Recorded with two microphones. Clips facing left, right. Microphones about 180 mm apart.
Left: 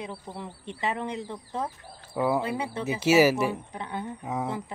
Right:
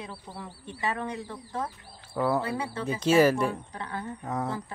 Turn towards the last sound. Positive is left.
turn(degrees=10)  # may be behind; listen again after turning